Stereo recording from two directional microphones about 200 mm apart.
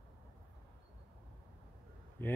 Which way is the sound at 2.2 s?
10° left (ahead or behind).